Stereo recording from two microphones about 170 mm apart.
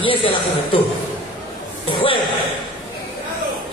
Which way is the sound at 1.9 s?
30° left (ahead or behind).